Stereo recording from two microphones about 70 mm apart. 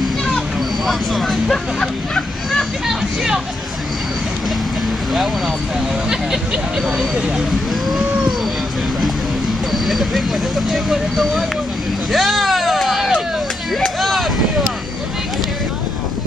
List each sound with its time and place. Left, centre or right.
0.8 s vehicle: centre
6.0 s speech: centre
9.7 s speech: centre
12.1 s a sound: centre